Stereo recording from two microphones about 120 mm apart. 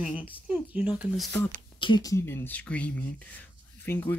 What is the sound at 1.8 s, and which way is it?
Speech, 40° left (ahead or behind).